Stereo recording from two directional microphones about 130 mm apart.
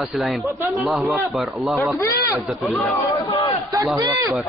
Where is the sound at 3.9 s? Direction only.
30° right (ahead or behind).